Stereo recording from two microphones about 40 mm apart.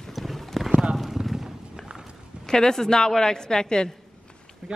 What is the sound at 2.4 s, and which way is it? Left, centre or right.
A woman's voice, centre.